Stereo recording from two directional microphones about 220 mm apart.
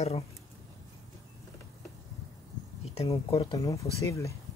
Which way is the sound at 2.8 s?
30° left (ahead or behind).